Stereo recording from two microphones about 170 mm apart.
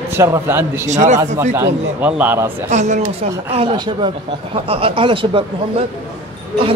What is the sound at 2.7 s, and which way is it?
Speech, 45° right (ahead or behind).